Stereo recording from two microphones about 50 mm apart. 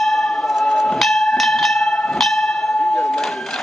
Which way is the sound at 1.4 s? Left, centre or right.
Centre.